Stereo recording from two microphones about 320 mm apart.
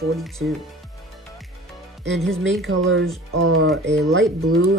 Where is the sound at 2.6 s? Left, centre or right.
Right.